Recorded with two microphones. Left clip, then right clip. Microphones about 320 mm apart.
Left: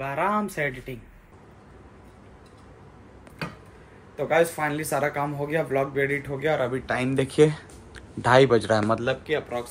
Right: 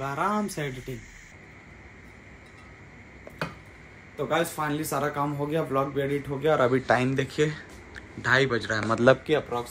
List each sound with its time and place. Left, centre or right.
0.0 s speech: centre
4.2 s speech: centre
7.0 s speech: centre
9.0 s speech: right